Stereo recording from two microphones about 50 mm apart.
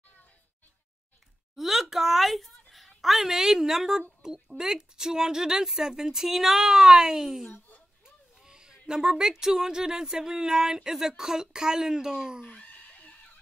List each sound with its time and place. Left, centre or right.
1.6 s a child's voice: centre
12.4 s chicken: left